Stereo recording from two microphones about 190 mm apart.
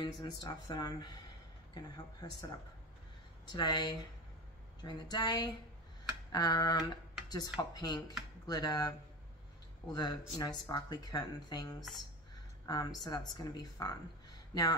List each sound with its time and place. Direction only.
0.0 s speech: 20° left (ahead or behind)
9.9 s speech: 20° left (ahead or behind)